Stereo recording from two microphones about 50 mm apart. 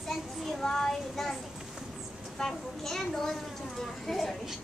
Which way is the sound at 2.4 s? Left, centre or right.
Centre.